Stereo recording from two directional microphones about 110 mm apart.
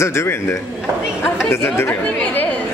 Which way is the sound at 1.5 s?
20° left (ahead or behind).